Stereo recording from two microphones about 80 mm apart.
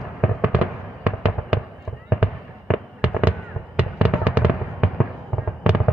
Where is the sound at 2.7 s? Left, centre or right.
Centre.